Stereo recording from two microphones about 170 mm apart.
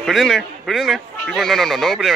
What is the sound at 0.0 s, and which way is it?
Speech, centre (ahead or behind).